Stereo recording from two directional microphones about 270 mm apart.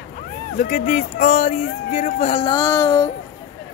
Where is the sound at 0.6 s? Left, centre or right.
Left; by 3.1 s centre.